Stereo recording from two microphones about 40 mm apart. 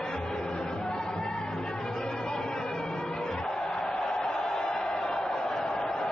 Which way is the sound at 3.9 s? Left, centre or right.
Centre.